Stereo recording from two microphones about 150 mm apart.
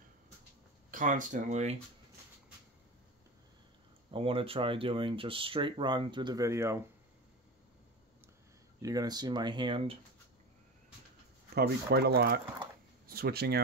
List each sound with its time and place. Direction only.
0.9 s speech: 60° right (ahead or behind)
4.1 s speech: 35° right (ahead or behind); by 6.8 s 20° right (ahead or behind)
8.8 s speech: 25° right (ahead or behind)
11.5 s speech: 90° right